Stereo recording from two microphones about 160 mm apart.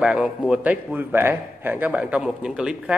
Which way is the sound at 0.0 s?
5° right (ahead or behind).